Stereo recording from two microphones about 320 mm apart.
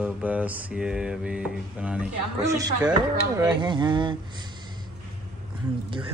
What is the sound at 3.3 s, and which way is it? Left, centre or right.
Speech, centre.